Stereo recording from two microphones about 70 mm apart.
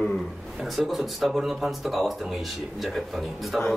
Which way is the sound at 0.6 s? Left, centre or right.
Centre.